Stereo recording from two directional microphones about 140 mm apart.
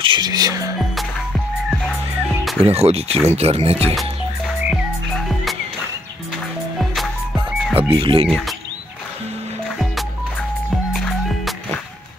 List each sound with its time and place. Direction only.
0.0 s music: 35° right (ahead or behind)
0.9 s music: centre (ahead or behind)
2.6 s speech: 45° right (ahead or behind)
3.9 s music: centre (ahead or behind)
7.7 s speech: 40° right (ahead or behind)
8.3 s speech: 5° left (ahead or behind)
10.7 s music: centre (ahead or behind)